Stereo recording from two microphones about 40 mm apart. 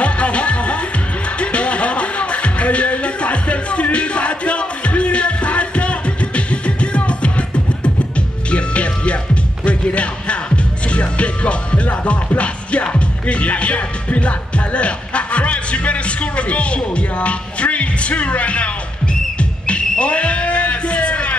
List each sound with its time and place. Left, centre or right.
0.0 s music: left